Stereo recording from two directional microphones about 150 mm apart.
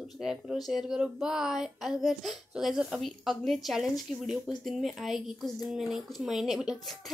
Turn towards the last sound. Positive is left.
turn(degrees=0)  # may be behind; listen again after turning